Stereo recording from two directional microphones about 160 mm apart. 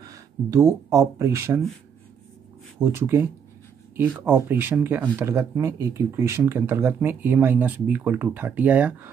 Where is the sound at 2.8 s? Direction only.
15° right (ahead or behind).